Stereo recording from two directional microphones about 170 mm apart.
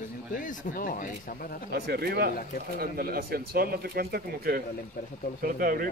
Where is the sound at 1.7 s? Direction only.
65° right (ahead or behind).